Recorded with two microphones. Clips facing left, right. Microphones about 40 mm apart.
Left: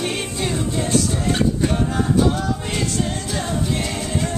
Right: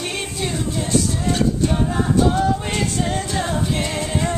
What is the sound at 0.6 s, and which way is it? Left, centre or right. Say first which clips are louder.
Music: even; centre.